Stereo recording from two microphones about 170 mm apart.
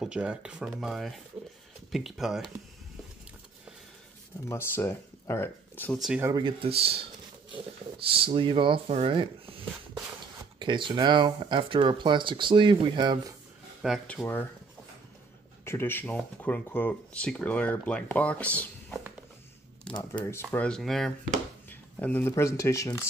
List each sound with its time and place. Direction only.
0.0 s speech: 5° right (ahead or behind)
4.5 s speech: 15° left (ahead or behind)
5.9 s speech: 5° right (ahead or behind)
6.2 s speech: 25° right (ahead or behind)
8.1 s speech: 30° right (ahead or behind)
10.6 s speech: 30° right (ahead or behind)
13.8 s speech: centre (ahead or behind)
14.2 s speech: 15° left (ahead or behind)
15.6 s speech: 15° left (ahead or behind)
20.0 s speech: 15° left (ahead or behind)
20.5 s speech: 5° left (ahead or behind)